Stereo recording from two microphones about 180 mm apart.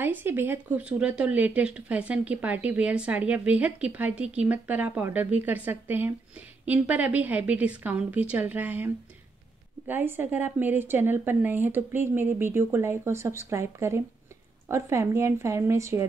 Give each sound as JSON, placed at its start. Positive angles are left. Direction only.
{"t": 0.0, "sound": "speech", "side_deg": -10}